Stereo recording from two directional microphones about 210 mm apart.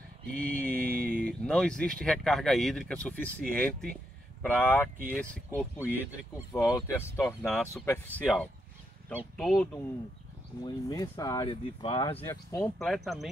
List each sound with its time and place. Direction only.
0.3 s speech: 10° left (ahead or behind)
10.6 s speech: 15° left (ahead or behind)
12.3 s speech: 15° left (ahead or behind)
12.7 s speech: centre (ahead or behind)